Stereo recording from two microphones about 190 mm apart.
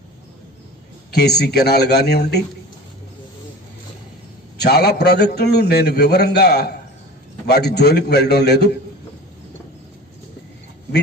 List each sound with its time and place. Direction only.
1.1 s a man's voice: 60° left (ahead or behind)
4.6 s a man's voice: 60° left (ahead or behind)